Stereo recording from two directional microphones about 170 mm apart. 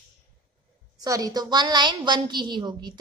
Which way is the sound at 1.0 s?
20° right (ahead or behind).